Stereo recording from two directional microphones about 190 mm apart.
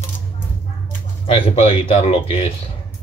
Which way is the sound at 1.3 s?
30° left (ahead or behind).